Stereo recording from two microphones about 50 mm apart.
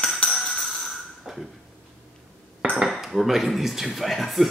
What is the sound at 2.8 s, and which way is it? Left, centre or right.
Speech, centre.